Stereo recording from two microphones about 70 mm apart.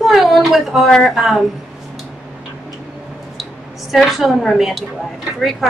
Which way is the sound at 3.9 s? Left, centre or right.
Centre.